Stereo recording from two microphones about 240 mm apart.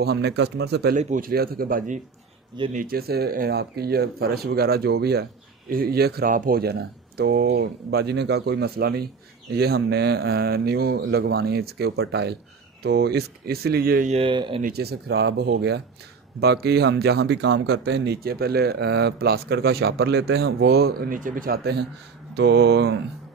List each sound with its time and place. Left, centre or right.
0.0 s speech: right
14.6 s speech: right